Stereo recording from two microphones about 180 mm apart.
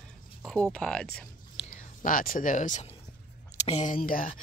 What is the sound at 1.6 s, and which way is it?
Speech, 45° left (ahead or behind).